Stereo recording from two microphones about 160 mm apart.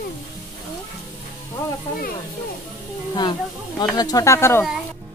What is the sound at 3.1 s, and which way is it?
Speech, 25° left (ahead or behind).